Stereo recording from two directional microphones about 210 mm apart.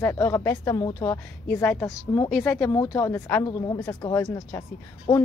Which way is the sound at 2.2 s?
Centre (ahead or behind).